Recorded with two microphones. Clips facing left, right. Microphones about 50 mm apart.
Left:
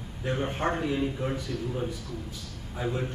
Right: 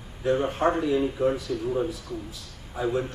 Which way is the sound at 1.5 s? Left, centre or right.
Left.